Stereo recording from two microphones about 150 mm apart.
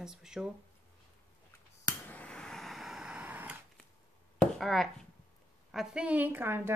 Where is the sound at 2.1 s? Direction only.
10° left (ahead or behind); by 3.6 s 10° right (ahead or behind).